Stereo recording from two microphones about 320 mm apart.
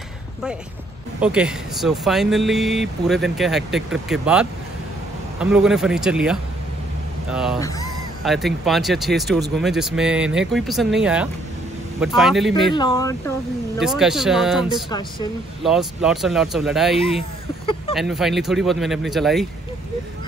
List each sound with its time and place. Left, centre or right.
1.2 s speech: centre
12.7 s speech: centre
13.7 s speech: centre
14.9 s speech: centre
15.6 s speech: centre
16.9 s speech: centre
17.9 s speech: centre